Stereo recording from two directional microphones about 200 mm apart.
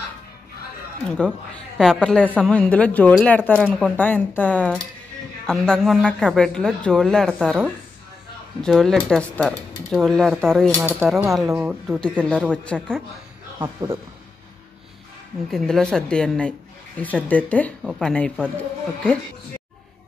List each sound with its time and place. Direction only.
1.0 s a woman's voice: 5° left (ahead or behind)
11.0 s a woman's voice: 10° right (ahead or behind)
13.6 s a man's voice: 15° right (ahead or behind)
15.5 s a woman's voice: 5° left (ahead or behind)